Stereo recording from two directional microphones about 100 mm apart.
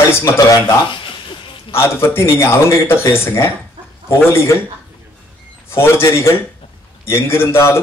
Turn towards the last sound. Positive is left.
turn(degrees=25)  # may be behind; listen again after turning